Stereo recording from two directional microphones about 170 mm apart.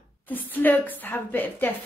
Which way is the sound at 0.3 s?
10° left (ahead or behind).